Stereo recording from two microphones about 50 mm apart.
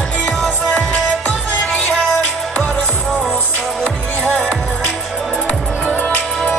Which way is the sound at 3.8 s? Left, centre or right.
Left.